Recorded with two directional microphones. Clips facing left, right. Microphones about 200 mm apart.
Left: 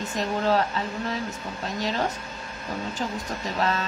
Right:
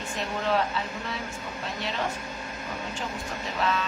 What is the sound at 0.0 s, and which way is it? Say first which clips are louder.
Music: left 5 dB; 40° left (ahead or behind).